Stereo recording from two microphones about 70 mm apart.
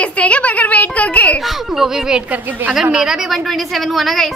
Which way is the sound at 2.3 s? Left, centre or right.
Right.